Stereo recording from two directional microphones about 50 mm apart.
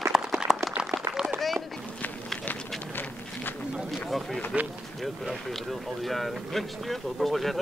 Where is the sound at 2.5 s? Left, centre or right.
Left.